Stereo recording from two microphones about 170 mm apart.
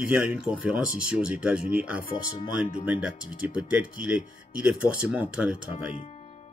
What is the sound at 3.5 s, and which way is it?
Speech, 5° right (ahead or behind).